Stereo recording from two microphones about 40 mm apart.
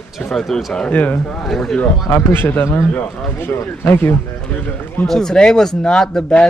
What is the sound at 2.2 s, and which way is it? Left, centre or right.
Speech, left.